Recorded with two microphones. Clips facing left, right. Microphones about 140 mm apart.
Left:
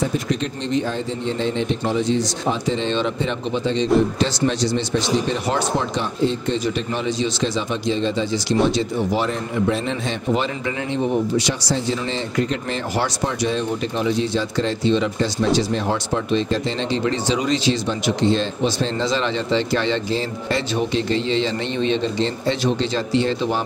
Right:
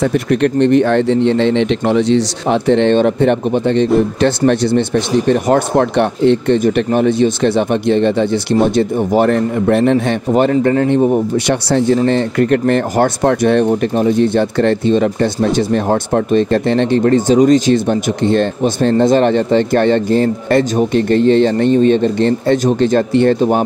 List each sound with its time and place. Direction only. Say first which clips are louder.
0.0 s speech: right 9 dB; 65° right (ahead or behind)